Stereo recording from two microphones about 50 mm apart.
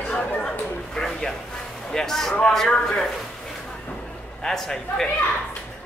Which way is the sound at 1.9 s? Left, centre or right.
Centre.